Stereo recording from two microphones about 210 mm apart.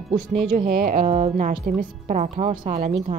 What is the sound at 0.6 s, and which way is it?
Speech, 30° right (ahead or behind).